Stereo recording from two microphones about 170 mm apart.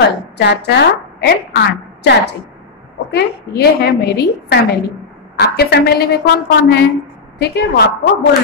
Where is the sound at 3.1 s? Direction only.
70° left (ahead or behind).